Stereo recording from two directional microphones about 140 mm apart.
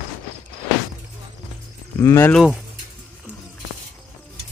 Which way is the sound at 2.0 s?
20° left (ahead or behind).